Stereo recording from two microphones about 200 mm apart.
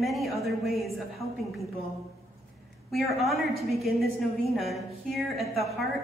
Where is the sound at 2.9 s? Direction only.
Centre (ahead or behind).